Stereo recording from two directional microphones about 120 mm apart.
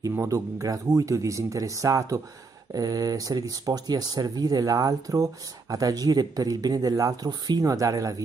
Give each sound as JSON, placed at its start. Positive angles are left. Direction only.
{"t": 0.0, "sound": "speech", "side_deg": -25}